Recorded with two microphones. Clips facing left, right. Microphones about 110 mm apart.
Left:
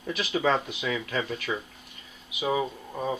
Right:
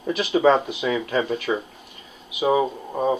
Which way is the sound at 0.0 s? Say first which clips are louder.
Right 8 dB; 30° right (ahead or behind).